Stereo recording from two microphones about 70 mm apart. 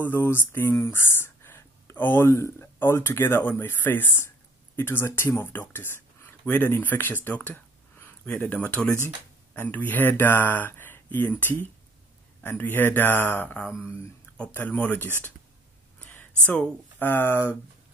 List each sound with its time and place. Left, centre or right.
0.0 s speech: left
0.7 s a sound: left
2.2 s speech: left
7.2 s a sound: left
8.5 s speech: left
13.8 s speech: left
14.5 s speech: left
16.0 s a sound: left
16.4 s speech: left